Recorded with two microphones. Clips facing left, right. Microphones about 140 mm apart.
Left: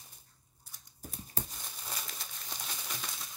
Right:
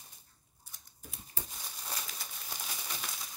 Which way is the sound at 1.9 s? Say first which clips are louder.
Right 1 dB; centre (ahead or behind).